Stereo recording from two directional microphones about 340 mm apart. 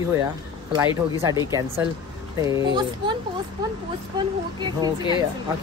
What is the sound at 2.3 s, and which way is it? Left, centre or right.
Speech, centre.